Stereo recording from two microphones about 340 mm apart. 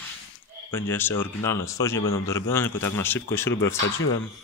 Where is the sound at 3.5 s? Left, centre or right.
Left.